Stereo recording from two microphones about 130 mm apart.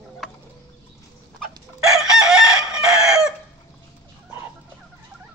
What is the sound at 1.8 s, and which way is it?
Chicken, 5° right (ahead or behind).